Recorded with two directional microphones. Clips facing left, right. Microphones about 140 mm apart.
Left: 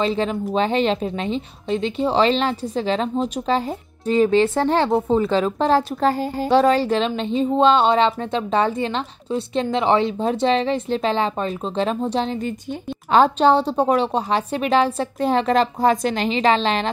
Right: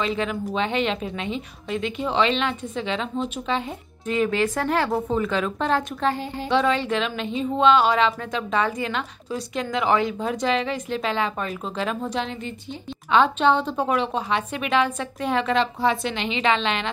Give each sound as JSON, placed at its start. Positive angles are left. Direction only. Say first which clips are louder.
{"t": 0.0, "sound": "a woman's voice", "louder": "left 4 dB", "side_deg": 30}